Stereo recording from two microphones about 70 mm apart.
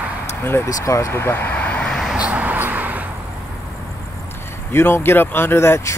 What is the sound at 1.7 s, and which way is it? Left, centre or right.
Vehicle, centre.